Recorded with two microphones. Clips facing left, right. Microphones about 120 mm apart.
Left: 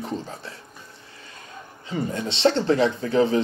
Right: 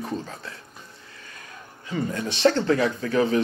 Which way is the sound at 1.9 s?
25° left (ahead or behind).